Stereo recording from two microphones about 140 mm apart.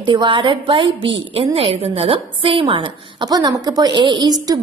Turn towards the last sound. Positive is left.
turn(degrees=-35)  # may be behind; listen again after turning